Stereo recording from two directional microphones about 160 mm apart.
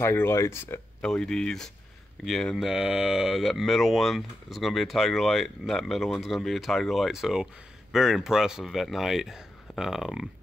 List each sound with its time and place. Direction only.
0.0 s speech: 15° left (ahead or behind)
1.0 s speech: 5° left (ahead or behind)